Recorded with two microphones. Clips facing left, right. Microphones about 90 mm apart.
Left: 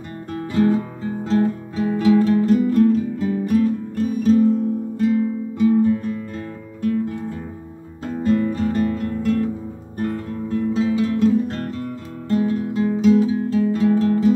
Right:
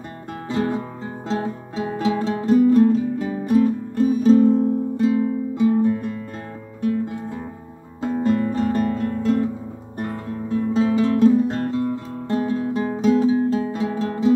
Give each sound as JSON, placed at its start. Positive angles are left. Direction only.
{"t": 0.3, "sound": "music", "side_deg": -25}
{"t": 5.0, "sound": "music", "side_deg": -20}
{"t": 9.9, "sound": "guitar", "side_deg": -20}
{"t": 11.0, "sound": "music", "side_deg": -25}